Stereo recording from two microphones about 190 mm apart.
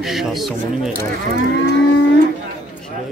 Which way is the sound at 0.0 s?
Centre (ahead or behind).